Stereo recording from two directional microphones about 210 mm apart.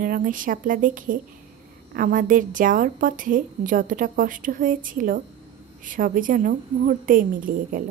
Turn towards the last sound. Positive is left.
turn(degrees=-40)  # may be behind; listen again after turning